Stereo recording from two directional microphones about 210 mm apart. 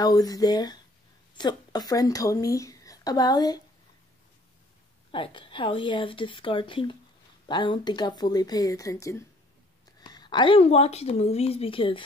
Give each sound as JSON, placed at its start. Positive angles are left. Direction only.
{"t": 0.0, "sound": "speech", "side_deg": 20}
{"t": 5.1, "sound": "a woman's voice", "side_deg": 25}